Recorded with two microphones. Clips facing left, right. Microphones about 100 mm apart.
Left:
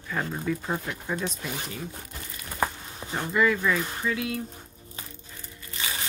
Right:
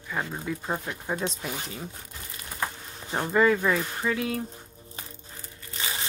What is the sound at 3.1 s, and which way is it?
Speech, 30° right (ahead or behind).